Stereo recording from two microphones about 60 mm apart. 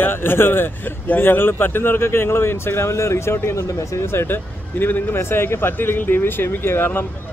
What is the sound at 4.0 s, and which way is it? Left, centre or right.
Speech, left.